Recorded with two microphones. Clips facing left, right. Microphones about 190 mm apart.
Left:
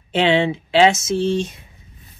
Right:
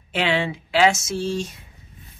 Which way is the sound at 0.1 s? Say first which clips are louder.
Left 6 dB; 25° left (ahead or behind).